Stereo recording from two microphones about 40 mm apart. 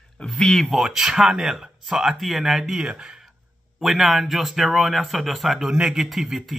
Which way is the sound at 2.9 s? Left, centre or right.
Right.